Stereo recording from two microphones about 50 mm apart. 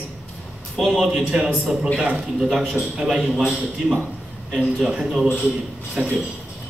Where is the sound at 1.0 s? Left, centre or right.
Centre.